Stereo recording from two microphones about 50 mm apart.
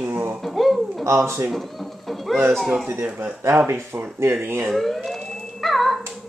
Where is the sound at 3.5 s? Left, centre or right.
Right.